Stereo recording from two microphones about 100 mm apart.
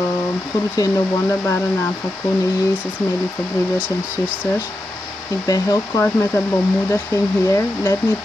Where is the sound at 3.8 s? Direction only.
15° right (ahead or behind).